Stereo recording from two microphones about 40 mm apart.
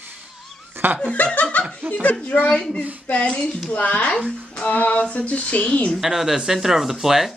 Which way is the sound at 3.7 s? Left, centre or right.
Left.